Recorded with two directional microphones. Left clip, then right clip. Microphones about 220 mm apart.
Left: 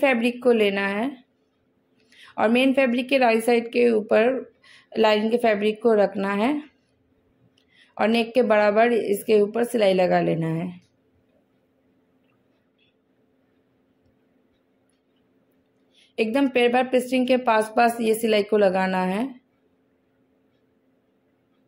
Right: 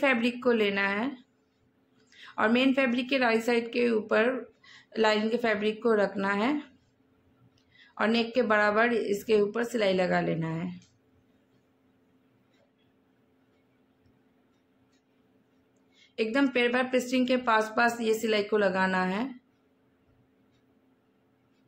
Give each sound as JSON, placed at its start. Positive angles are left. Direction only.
{"t": 0.0, "sound": "a woman's voice", "side_deg": 20}
{"t": 7.7, "sound": "a woman's voice", "side_deg": 20}
{"t": 16.0, "sound": "a woman's voice", "side_deg": 20}